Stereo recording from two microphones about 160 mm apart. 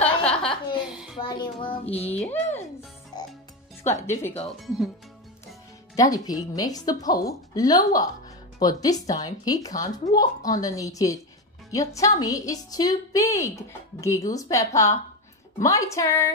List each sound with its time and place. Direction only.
0.0 s a sound: 5° left (ahead or behind)
1.1 s a woman's voice: 30° left (ahead or behind)
2.2 s a child's voice: 10° left (ahead or behind)
3.1 s music: 25° left (ahead or behind)
3.8 s speech: 15° left (ahead or behind)
5.9 s speech: 25° left (ahead or behind)